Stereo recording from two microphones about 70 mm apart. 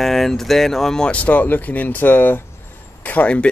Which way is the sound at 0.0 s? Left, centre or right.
Centre.